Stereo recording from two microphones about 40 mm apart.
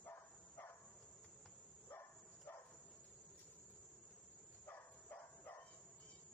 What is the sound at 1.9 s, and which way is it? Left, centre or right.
Dog, left.